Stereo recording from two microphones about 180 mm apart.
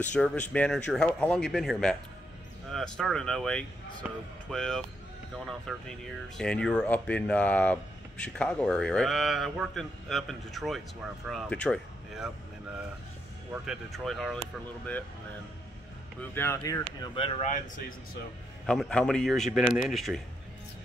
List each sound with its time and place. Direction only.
0.1 s speech: 5° left (ahead or behind)
4.0 s speech: 5° right (ahead or behind)
13.5 s speech: centre (ahead or behind)
16.2 s speech: 10° left (ahead or behind)
17.1 s speech: 30° left (ahead or behind)
17.5 s speech: 45° left (ahead or behind)
18.7 s speech: 5° left (ahead or behind)